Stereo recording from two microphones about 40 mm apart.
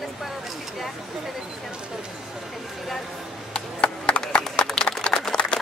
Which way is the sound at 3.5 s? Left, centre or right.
Left.